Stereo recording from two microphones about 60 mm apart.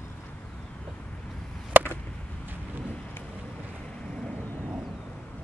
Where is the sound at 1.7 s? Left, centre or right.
Right.